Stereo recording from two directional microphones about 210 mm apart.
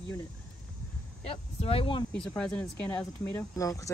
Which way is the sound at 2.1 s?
5° left (ahead or behind).